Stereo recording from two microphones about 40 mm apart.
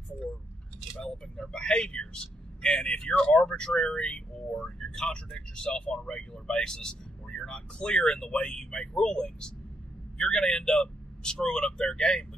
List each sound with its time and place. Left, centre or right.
1.1 s speech: left